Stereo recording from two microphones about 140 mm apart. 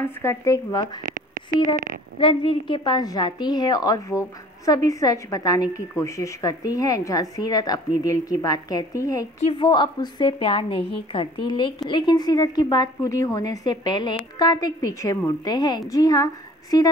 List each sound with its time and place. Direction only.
0.0 s a woman's voice: 15° left (ahead or behind)
1.0 s speech: 70° right (ahead or behind)
2.1 s a woman's voice: 40° left (ahead or behind); by 9.3 s 25° left (ahead or behind)
9.4 s a woman's voice: 40° left (ahead or behind); by 16.3 s 25° left (ahead or behind)